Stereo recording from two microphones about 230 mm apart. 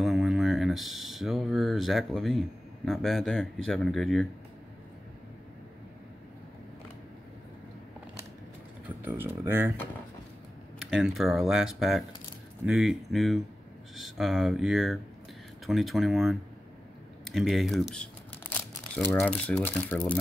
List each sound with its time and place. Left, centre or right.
0.0 s a sound: centre
8.8 s speech: centre
10.9 s speech: centre